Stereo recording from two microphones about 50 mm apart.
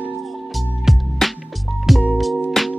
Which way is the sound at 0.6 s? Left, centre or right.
Centre.